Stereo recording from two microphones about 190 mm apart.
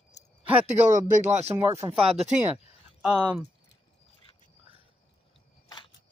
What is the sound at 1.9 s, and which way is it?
Speech, 30° right (ahead or behind).